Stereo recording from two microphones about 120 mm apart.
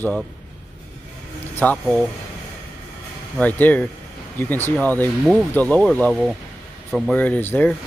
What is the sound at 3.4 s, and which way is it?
Speech, 15° left (ahead or behind).